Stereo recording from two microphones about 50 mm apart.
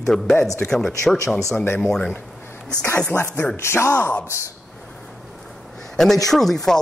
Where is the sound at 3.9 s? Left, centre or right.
Left.